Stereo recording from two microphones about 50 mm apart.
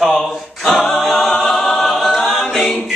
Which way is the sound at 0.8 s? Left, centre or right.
Centre.